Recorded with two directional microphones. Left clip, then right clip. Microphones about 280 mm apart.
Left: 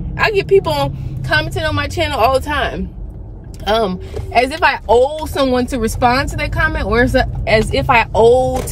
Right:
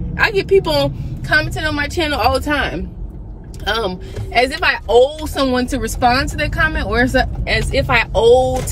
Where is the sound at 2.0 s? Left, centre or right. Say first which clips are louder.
Left 3 dB; centre.